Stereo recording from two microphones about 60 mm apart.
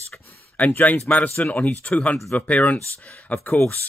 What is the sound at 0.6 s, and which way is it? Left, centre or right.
Speech, left.